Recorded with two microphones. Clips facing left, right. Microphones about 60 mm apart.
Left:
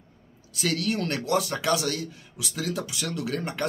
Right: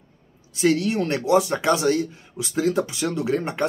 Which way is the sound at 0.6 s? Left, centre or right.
Right.